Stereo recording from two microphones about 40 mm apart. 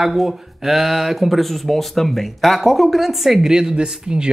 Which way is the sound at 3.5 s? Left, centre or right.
Centre.